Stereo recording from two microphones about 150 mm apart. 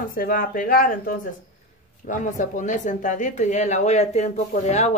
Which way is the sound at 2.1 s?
55° left (ahead or behind).